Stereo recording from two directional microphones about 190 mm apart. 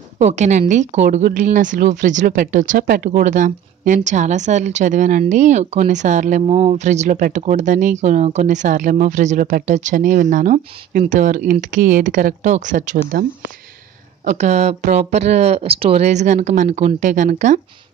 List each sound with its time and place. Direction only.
0.2 s speech: 35° right (ahead or behind)
14.2 s speech: 40° right (ahead or behind)